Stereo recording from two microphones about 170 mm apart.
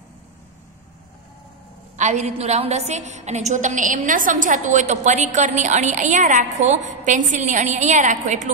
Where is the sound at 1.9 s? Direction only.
45° right (ahead or behind).